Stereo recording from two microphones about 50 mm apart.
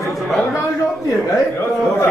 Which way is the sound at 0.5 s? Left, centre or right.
Left.